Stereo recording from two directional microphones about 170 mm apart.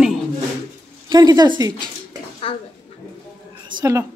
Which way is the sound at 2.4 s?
30° left (ahead or behind).